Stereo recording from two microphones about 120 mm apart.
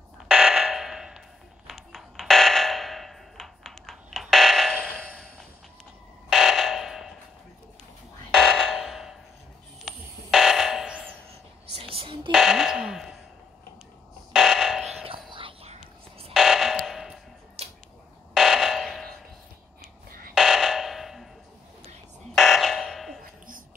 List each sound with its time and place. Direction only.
0.3 s fire alarm: 5° right (ahead or behind)
8.3 s music: centre (ahead or behind)
11.7 s a sound: 50° right (ahead or behind)
12.3 s fire alarm: 5° right (ahead or behind)
14.3 s fire alarm: 5° right (ahead or behind)
15.0 s whispering: 45° right (ahead or behind)
16.3 s fire alarm: centre (ahead or behind)
17.6 s a sound: 55° right (ahead or behind)
18.3 s a sound: centre (ahead or behind)
20.3 s fire alarm: 5° right (ahead or behind)
22.3 s buzzer: centre (ahead or behind)